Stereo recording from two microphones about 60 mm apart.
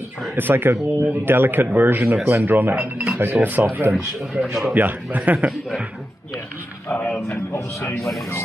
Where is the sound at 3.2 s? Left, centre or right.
Right.